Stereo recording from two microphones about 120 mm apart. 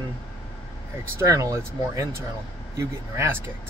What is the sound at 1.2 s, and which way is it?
Speech, 25° right (ahead or behind).